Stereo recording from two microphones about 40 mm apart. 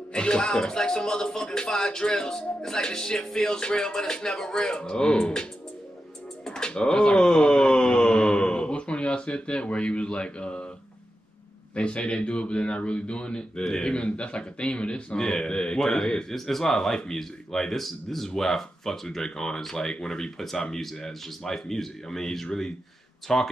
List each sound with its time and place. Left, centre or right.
0.1 s speech: left
6.4 s pigeon: centre
7.2 s speech: centre
11.7 s speech: left; by 23.5 s centre